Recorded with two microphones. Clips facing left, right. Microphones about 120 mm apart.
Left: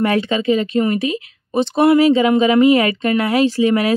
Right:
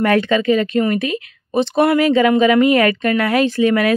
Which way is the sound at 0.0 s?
50° right (ahead or behind).